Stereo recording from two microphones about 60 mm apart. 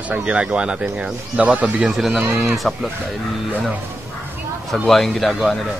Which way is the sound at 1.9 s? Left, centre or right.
Centre.